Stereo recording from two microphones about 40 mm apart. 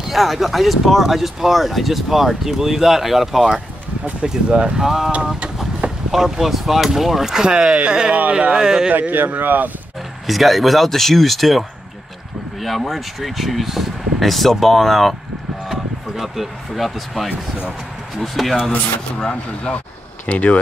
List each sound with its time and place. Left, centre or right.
0.1 s speech: centre
4.3 s speech: right
4.8 s speech: centre
5.8 s boat: right
6.1 s speech: centre; by 8.5 s right
8.5 s speech: centre
9.4 s speech: right
10.2 s speech: centre
15.7 s a sound: centre
18.2 s speech: centre
19.1 s speech: left